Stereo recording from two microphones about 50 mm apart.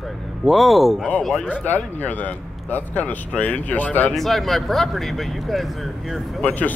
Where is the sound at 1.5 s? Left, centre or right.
Left.